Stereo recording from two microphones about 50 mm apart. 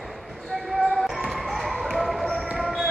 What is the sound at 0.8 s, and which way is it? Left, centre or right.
Basketball bounce, centre.